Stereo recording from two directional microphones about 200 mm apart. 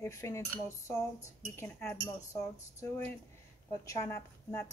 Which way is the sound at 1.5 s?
10° left (ahead or behind).